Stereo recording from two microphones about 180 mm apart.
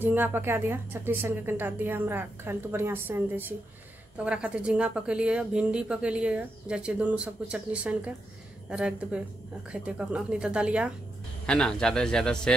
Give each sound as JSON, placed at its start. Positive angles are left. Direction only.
{"t": 0.0, "sound": "a woman's voice", "side_deg": -10}